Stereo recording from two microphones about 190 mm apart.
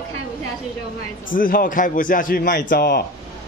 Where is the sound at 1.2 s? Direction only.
45° left (ahead or behind).